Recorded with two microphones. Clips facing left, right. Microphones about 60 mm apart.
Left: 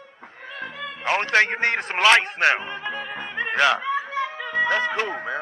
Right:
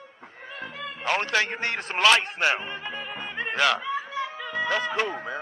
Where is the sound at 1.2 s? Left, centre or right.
Left.